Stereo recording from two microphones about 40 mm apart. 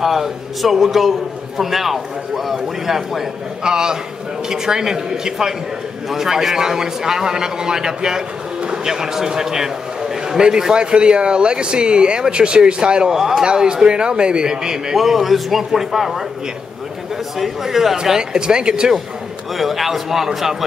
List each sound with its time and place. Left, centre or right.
0.0 s a man's voice: centre
3.6 s a man's voice: centre
15.0 s a man's voice: centre
17.4 s a man's voice: centre
19.5 s a man's voice: centre